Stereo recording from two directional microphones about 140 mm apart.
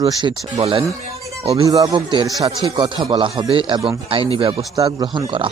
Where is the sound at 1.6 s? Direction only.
25° right (ahead or behind).